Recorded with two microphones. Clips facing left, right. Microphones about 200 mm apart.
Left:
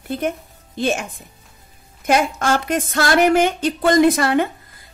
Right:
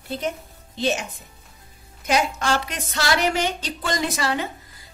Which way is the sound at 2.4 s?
50° left (ahead or behind).